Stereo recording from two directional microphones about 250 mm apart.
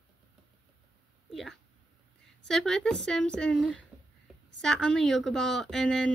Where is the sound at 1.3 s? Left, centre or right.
Centre.